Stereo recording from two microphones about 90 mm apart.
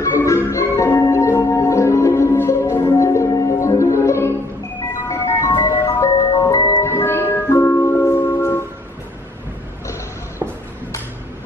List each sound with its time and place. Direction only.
0.0 s music: 35° left (ahead or behind)
5.5 s ice cream truck: 50° left (ahead or behind)
5.9 s music: 35° left (ahead or behind)